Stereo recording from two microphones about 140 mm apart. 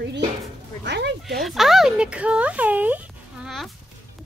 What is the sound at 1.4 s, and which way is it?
Speech, centre (ahead or behind).